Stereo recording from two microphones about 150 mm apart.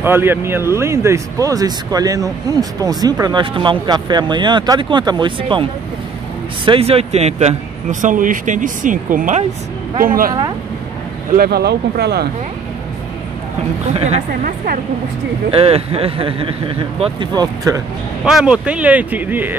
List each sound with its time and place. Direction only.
0.0 s speech: 15° right (ahead or behind); by 10.3 s 70° right (ahead or behind)
11.3 s speech: 90° right
13.9 s a woman's voice: 45° right (ahead or behind)
15.5 s speech: 40° right (ahead or behind); by 17.8 s 25° right (ahead or behind)
18.2 s speech: 5° right (ahead or behind)